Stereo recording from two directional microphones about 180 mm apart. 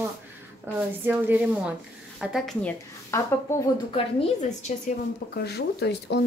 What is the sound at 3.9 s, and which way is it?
A woman's voice, 35° left (ahead or behind).